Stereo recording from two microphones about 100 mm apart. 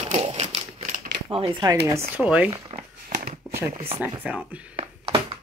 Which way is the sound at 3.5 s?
25° right (ahead or behind).